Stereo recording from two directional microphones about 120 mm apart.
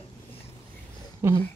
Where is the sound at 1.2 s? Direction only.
20° right (ahead or behind).